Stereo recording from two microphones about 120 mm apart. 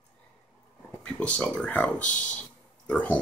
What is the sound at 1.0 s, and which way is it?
Speech, 10° left (ahead or behind).